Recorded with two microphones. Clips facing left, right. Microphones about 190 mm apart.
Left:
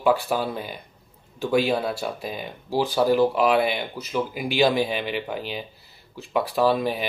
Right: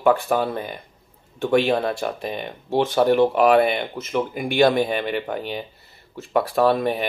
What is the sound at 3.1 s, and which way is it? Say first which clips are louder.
Speech: right 5 dB; centre (ahead or behind).